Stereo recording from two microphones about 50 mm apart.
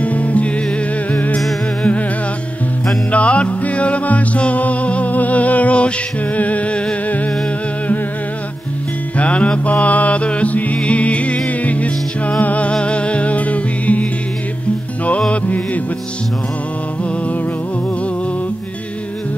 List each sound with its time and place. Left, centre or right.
0.0 s music: left
3.1 s music: left
9.1 s music: left
15.0 s music: left